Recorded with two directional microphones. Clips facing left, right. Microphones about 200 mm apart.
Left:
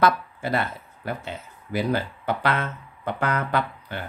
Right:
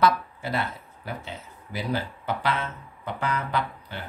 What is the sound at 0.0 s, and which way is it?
Speech, 50° left (ahead or behind).